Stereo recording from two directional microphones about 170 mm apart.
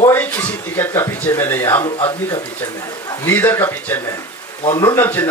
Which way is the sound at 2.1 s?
25° left (ahead or behind).